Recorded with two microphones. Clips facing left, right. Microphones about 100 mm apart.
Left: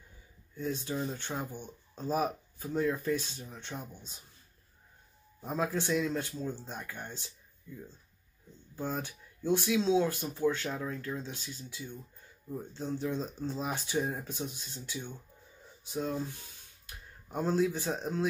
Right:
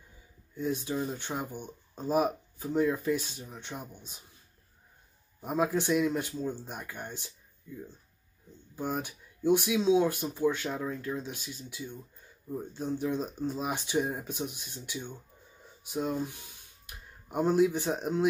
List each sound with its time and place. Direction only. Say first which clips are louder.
0.6 s speech: right 3 dB; 15° right (ahead or behind)
5.4 s speech: right 4 dB; 15° right (ahead or behind)
8.7 s speech: right 2 dB; 15° right (ahead or behind)